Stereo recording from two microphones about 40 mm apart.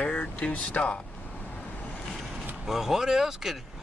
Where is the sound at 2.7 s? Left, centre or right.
Centre.